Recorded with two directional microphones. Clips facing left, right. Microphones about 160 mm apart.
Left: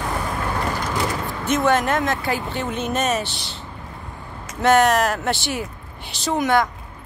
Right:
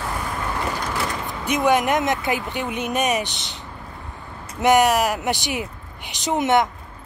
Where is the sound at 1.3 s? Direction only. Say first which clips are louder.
Right 1 dB; 15° right (ahead or behind).